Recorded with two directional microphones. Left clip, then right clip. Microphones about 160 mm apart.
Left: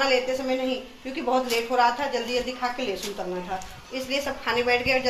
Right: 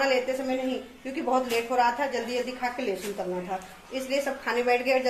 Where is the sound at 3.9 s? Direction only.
5° right (ahead or behind).